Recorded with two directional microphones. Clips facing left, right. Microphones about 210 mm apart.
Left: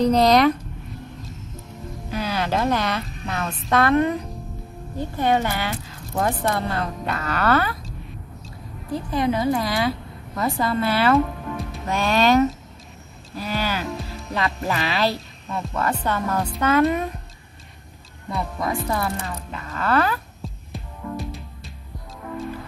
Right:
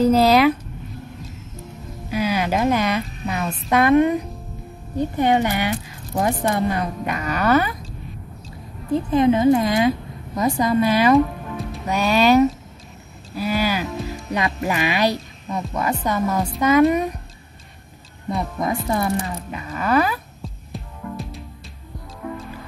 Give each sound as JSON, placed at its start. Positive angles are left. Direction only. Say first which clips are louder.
{"t": 0.0, "sound": "speech", "louder": "right 2 dB", "side_deg": -5}
{"t": 2.0, "sound": "a woman's voice", "louder": "right 4 dB", "side_deg": -10}
{"t": 8.9, "sound": "a woman's voice", "louder": "right 6 dB", "side_deg": -20}
{"t": 13.3, "sound": "a sound", "louder": "right 4 dB", "side_deg": -10}
{"t": 14.3, "sound": "speech", "louder": "right 2 dB", "side_deg": -15}
{"t": 18.3, "sound": "a woman's voice", "louder": "right 2 dB", "side_deg": -20}
{"t": 20.4, "sound": "heart sounds", "louder": "right 1 dB", "side_deg": 0}